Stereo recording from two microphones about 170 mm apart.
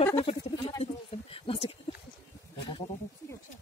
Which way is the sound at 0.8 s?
35° left (ahead or behind).